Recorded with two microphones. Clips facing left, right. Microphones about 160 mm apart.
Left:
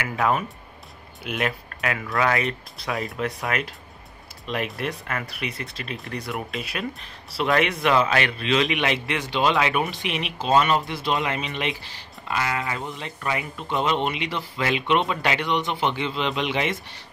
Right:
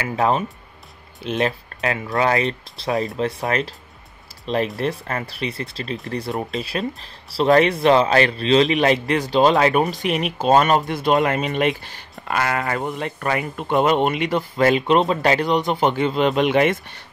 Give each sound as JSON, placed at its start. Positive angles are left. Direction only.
{"t": 0.0, "sound": "speech", "side_deg": -30}
{"t": 4.7, "sound": "speech", "side_deg": -35}